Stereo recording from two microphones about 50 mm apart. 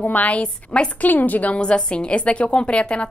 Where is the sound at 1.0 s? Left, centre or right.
Left.